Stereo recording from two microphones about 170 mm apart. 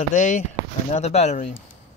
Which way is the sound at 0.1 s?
50° left (ahead or behind).